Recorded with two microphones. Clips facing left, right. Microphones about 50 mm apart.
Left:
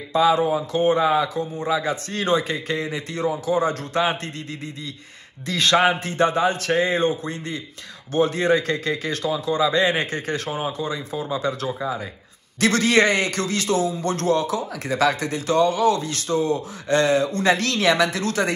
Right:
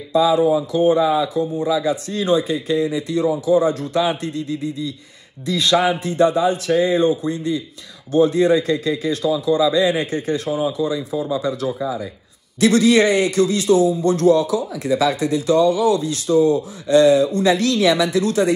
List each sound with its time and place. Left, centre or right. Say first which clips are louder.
0.1 s speech: right 3 dB; left
1.0 s speech: right 2 dB; left
1.6 s a man's voice: right 2 dB; left